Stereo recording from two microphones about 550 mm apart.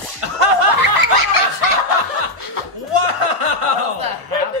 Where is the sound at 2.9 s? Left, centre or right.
Right.